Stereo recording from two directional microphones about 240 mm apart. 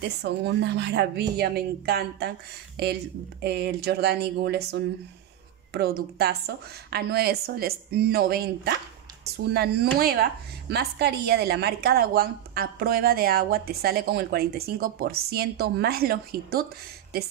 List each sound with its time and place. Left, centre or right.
0.2 s speech: right
3.4 s speech: right